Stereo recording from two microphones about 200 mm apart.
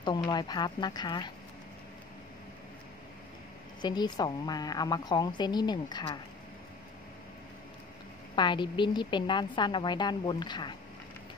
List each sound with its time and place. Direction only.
0.0 s a woman's voice: 20° left (ahead or behind)
3.8 s a woman's voice: 20° left (ahead or behind)
8.4 s a woman's voice: 25° left (ahead or behind)